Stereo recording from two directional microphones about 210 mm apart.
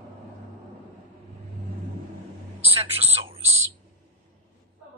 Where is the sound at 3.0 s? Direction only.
25° right (ahead or behind).